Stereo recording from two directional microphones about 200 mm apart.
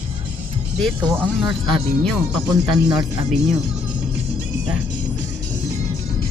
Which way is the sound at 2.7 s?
Centre (ahead or behind).